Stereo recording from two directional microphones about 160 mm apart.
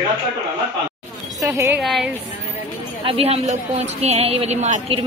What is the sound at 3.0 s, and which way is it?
A woman's voice, 40° right (ahead or behind).